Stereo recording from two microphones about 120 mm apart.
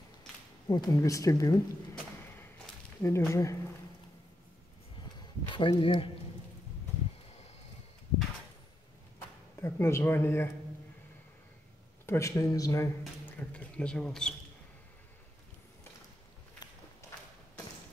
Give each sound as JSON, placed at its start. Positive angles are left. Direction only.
{"t": 0.7, "sound": "speech", "side_deg": 30}
{"t": 3.0, "sound": "speech", "side_deg": 25}
{"t": 5.5, "sound": "speech", "side_deg": 45}
{"t": 9.6, "sound": "speech", "side_deg": 20}
{"t": 12.1, "sound": "speech", "side_deg": 25}
{"t": 13.2, "sound": "speech", "side_deg": 10}